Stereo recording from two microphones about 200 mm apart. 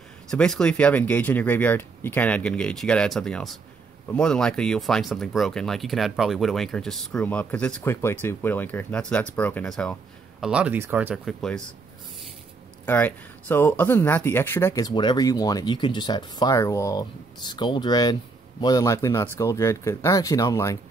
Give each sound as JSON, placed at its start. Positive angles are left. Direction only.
{"t": 0.3, "sound": "speech", "side_deg": 5}
{"t": 12.8, "sound": "speech", "side_deg": 10}